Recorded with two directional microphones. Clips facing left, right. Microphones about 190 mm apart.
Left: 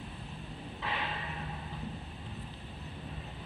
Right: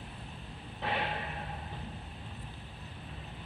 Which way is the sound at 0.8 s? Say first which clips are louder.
Right 4 dB; 55° right (ahead or behind).